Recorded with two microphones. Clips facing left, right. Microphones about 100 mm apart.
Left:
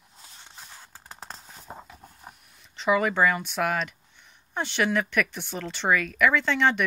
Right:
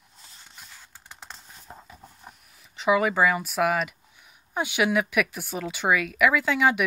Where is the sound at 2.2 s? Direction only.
Centre (ahead or behind).